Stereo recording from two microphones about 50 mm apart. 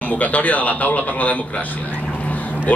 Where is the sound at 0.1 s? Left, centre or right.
Left.